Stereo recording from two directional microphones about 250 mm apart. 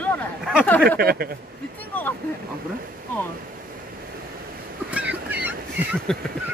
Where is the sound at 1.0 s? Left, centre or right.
Right.